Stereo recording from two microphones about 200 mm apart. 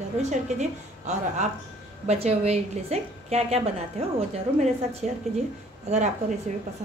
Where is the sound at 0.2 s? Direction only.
35° right (ahead or behind).